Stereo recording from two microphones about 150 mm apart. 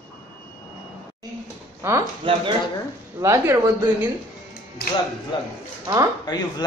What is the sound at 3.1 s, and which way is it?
Speech, 20° right (ahead or behind).